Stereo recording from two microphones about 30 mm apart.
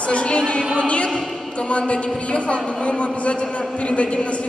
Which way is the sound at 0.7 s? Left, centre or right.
Left.